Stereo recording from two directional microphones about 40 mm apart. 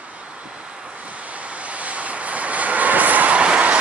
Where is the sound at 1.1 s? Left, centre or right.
Right.